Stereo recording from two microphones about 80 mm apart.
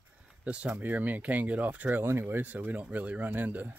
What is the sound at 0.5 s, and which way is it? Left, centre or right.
Speech, centre.